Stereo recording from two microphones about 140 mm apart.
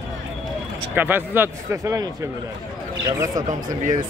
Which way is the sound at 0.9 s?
15° right (ahead or behind).